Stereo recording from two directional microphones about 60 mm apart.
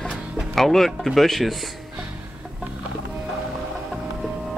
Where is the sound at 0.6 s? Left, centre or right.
Centre.